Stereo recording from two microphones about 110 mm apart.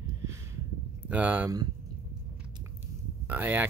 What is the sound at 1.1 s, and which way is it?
Speech, 15° right (ahead or behind).